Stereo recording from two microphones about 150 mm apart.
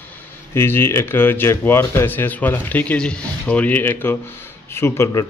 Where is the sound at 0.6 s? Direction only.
15° left (ahead or behind).